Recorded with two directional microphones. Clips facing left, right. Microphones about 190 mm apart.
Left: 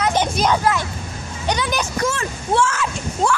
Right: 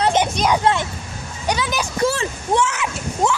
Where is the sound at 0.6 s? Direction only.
25° right (ahead or behind).